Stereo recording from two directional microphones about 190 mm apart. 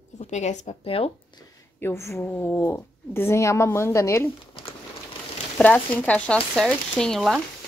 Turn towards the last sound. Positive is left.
turn(degrees=0)  # may be behind; listen again after turning